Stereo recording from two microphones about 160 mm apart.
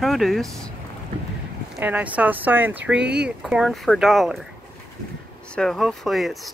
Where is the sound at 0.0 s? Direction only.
Centre (ahead or behind).